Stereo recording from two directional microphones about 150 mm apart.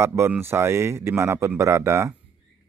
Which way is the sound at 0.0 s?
15° right (ahead or behind).